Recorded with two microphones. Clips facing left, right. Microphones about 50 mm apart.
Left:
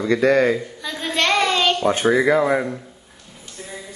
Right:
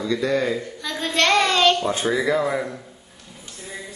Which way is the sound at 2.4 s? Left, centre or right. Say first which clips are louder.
Left 4 dB; centre.